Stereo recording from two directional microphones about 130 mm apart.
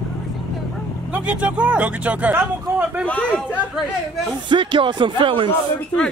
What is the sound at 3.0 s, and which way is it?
Speech, 10° left (ahead or behind).